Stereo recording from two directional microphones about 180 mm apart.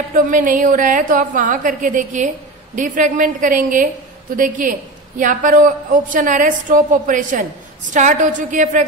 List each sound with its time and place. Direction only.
0.1 s a man's voice: 45° right (ahead or behind)